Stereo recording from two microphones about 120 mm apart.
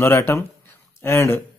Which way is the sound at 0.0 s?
20° left (ahead or behind).